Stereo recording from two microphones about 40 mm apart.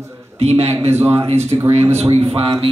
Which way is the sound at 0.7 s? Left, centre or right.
Right.